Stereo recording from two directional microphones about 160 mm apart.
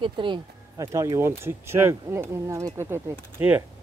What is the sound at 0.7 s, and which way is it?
Speech, 20° right (ahead or behind).